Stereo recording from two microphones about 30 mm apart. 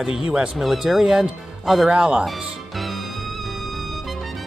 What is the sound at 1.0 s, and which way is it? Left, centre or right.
Speech, right.